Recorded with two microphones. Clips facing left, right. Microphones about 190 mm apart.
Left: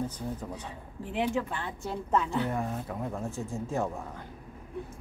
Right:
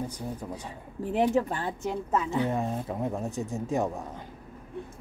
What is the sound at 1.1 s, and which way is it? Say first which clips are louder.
Speech: right 5 dB; 40° right (ahead or behind).